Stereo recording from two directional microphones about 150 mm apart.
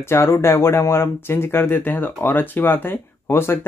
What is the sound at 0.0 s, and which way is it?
Speech, 15° left (ahead or behind).